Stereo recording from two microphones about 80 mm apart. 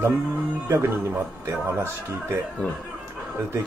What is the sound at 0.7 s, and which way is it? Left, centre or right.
Speech, right.